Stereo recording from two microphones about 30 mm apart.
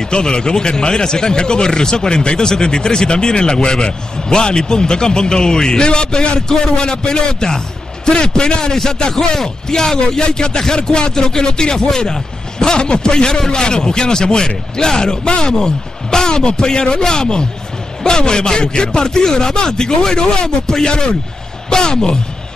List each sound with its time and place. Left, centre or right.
0.0 s speech: left